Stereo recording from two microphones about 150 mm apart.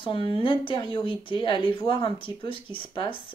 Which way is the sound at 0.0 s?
35° left (ahead or behind).